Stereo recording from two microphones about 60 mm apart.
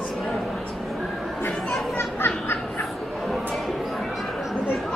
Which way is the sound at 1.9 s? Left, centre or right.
Left.